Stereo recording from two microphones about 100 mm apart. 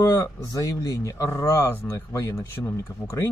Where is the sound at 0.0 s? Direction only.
35° left (ahead or behind).